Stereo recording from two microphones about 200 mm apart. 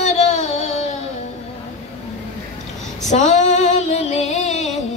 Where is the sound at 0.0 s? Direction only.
35° left (ahead or behind).